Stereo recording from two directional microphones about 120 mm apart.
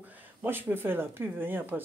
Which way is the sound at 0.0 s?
15° right (ahead or behind).